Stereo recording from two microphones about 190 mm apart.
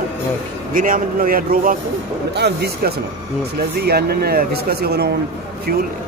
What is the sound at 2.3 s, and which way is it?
Speech, 60° right (ahead or behind).